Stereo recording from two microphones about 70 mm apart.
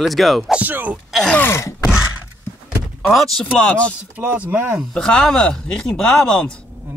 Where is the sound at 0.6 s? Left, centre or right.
Right.